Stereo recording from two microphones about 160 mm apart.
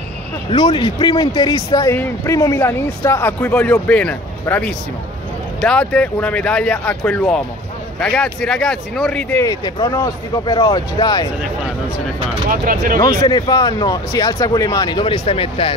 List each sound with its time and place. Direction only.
0.5 s speech: 30° left (ahead or behind); by 9.4 s 5° left (ahead or behind)
9.4 s speech: 20° left (ahead or behind)
12.4 s speech: 60° right (ahead or behind)
13.2 s speech: 25° left (ahead or behind)